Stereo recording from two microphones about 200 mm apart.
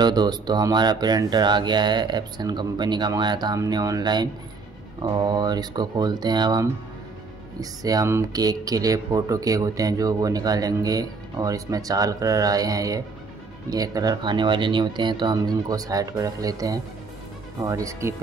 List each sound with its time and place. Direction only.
0.0 s speech: 20° right (ahead or behind)
7.8 s speech: 15° right (ahead or behind)